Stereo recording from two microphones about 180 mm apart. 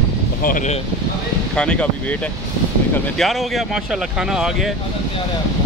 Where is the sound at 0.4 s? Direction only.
50° left (ahead or behind).